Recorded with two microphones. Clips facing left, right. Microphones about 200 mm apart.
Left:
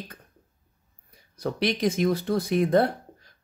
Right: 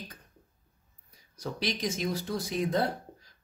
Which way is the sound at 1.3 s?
60° left (ahead or behind).